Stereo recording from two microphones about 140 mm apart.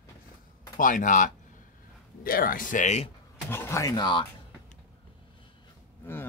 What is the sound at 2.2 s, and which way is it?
Speech, 90° left.